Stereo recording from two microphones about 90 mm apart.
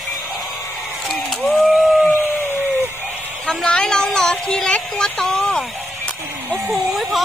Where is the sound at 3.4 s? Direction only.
10° left (ahead or behind).